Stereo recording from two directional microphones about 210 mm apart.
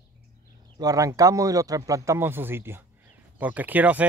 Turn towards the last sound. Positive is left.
turn(degrees=-5)  # may be behind; listen again after turning